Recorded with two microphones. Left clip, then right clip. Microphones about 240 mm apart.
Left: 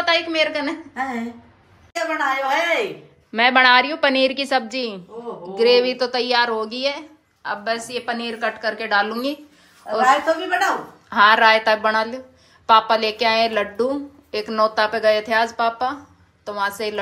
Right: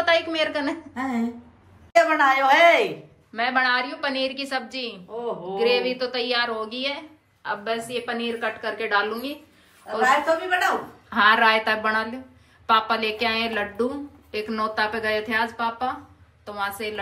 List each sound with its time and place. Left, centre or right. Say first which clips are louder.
0.0 s a woman's voice: left 2 dB; centre
2.0 s a woman's voice: right 4 dB; centre
3.3 s a woman's voice: left 8 dB; centre
11.1 s a woman's voice: left 4 dB; centre